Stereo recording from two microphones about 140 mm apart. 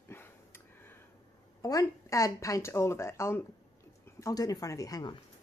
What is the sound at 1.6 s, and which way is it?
Speech, 25° left (ahead or behind).